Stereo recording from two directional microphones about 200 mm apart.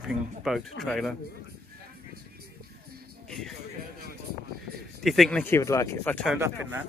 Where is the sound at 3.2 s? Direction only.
Centre (ahead or behind).